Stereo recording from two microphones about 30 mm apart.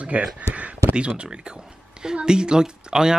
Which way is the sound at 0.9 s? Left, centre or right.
Right.